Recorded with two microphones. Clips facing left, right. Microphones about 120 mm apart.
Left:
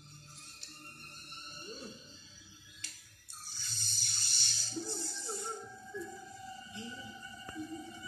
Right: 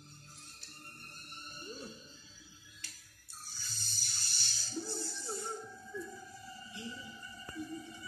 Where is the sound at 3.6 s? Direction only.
20° left (ahead or behind).